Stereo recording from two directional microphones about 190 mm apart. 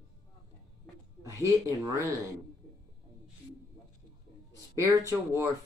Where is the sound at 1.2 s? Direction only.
15° right (ahead or behind).